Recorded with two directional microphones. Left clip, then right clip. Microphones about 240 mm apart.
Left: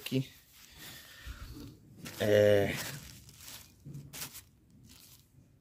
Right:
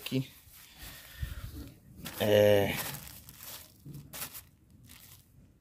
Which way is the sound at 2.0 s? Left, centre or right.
Right.